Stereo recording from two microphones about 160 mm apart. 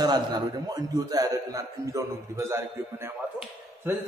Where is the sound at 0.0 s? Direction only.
25° right (ahead or behind).